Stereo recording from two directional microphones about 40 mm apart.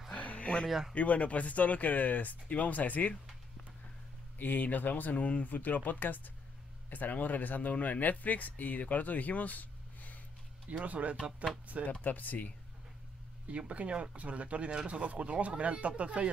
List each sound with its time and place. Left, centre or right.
0.1 s a sound: left
0.7 s speech: centre
0.9 s speech: left
4.4 s speech: left
10.7 s speech: right
11.8 s speech: left
13.5 s speech: right